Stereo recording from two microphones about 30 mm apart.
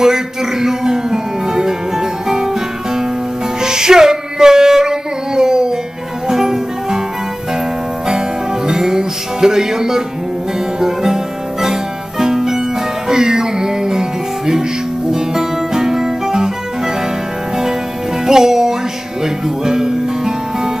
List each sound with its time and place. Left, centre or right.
0.0 s music: centre
8.6 s music: centre
18.2 s music: centre